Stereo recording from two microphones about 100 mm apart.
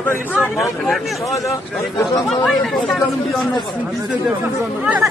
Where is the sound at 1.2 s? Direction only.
35° left (ahead or behind).